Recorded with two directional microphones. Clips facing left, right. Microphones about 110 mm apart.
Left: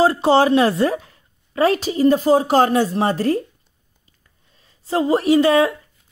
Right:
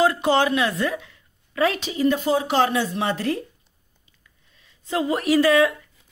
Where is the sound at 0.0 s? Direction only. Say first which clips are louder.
Left 4 dB; 30° left (ahead or behind).